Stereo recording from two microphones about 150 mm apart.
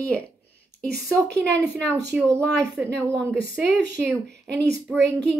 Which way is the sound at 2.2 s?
20° right (ahead or behind).